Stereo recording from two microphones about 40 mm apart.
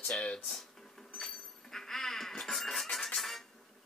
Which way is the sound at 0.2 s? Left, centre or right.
Left.